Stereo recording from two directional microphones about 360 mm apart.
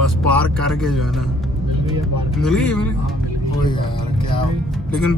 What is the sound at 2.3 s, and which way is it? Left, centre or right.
Speech, centre.